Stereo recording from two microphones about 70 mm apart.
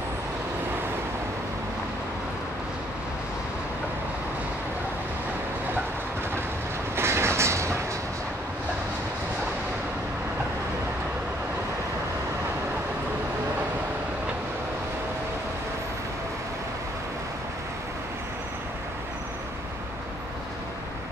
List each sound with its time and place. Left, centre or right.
7.0 s train: right